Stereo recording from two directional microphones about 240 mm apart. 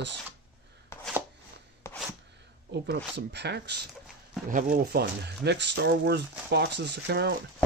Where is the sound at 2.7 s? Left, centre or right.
Right.